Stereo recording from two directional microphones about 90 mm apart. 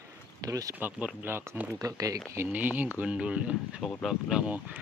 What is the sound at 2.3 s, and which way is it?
Speech, 20° right (ahead or behind).